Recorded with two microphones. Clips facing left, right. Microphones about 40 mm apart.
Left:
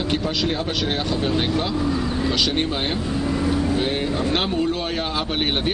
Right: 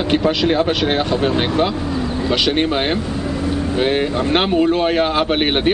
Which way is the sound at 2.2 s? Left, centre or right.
Right.